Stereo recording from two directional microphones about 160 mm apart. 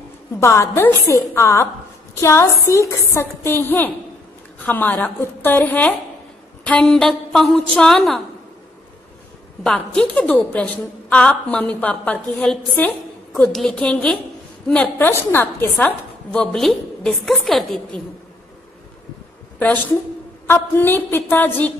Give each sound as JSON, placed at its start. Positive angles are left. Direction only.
{"t": 0.4, "sound": "a woman's voice", "side_deg": 15}
{"t": 9.6, "sound": "a woman's voice", "side_deg": 5}
{"t": 20.4, "sound": "a woman's voice", "side_deg": 15}